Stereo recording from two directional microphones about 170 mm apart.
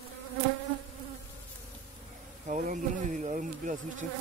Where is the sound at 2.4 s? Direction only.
45° right (ahead or behind).